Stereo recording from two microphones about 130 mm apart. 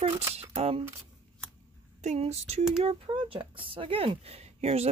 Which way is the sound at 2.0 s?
60° right (ahead or behind).